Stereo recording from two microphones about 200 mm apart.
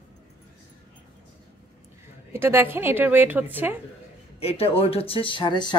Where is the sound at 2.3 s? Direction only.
10° right (ahead or behind).